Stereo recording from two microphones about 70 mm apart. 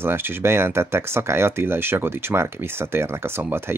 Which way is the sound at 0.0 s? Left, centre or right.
Right.